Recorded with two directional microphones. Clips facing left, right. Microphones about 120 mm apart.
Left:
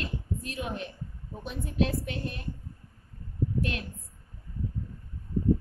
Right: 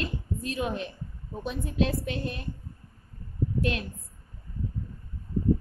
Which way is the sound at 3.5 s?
90° right.